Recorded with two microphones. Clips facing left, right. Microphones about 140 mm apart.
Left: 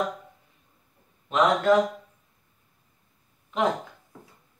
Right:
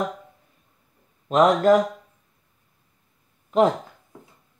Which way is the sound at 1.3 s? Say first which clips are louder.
Right 4 dB; 40° right (ahead or behind).